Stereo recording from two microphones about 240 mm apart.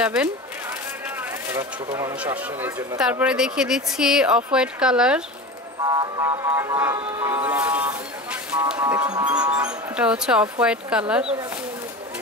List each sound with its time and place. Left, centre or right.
0.0 s speech: centre
1.5 s speech: centre
5.9 s speech: centre
8.7 s speech: centre
9.1 s speech: centre